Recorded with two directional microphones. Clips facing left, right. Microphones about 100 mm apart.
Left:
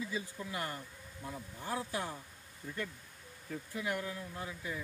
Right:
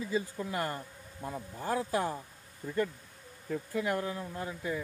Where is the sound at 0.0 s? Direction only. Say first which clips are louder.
Right 6 dB; 45° right (ahead or behind).